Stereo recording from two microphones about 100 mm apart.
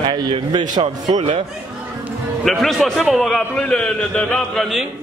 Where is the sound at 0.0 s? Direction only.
55° right (ahead or behind).